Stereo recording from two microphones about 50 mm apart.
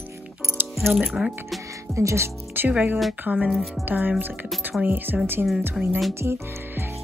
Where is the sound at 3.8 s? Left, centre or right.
Right.